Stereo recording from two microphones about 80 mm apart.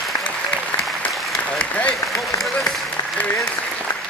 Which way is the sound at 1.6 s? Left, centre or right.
Centre.